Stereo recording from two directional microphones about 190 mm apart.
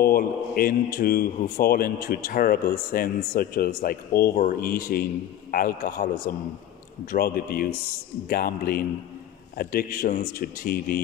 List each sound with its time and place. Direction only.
0.0 s a man's voice: 50° left (ahead or behind)